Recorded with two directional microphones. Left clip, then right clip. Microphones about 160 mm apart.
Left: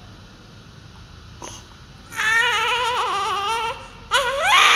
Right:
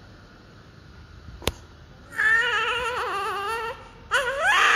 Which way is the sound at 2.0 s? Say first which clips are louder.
Even; 25° left (ahead or behind).